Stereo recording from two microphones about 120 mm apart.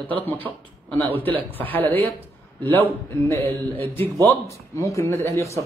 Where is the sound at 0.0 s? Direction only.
15° left (ahead or behind).